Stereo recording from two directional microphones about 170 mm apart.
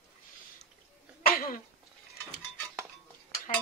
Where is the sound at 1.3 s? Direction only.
55° left (ahead or behind).